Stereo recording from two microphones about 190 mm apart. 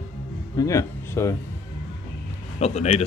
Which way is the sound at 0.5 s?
15° left (ahead or behind).